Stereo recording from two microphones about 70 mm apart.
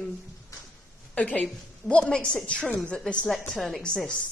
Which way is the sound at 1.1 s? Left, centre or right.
Centre.